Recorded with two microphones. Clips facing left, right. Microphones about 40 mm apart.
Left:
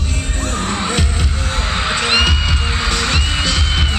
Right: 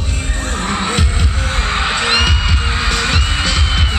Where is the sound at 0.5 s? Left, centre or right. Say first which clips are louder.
Right 2 dB; centre.